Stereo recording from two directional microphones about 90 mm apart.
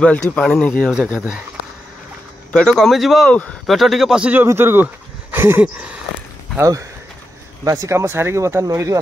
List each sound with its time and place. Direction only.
0.0 s speech: 10° left (ahead or behind)
2.5 s speech: 5° left (ahead or behind)
4.5 s speech: 25° right (ahead or behind)
5.6 s a sound: 15° right (ahead or behind)
6.6 s speech: 40° right (ahead or behind)
8.0 s speech: 25° right (ahead or behind)